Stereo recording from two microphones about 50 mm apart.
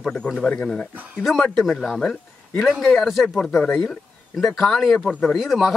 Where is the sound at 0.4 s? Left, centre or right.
Centre.